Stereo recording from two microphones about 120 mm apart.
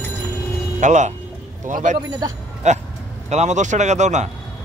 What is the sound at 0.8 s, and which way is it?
Speech, 90° right.